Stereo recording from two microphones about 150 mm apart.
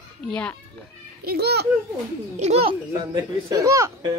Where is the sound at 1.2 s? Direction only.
90° right.